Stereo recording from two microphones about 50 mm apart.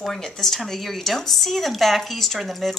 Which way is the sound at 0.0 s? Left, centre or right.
Centre.